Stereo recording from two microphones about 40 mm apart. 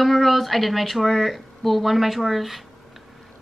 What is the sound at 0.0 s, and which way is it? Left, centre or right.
A woman's voice, centre.